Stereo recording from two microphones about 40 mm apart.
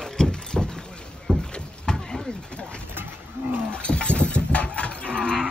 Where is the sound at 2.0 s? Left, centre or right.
Centre.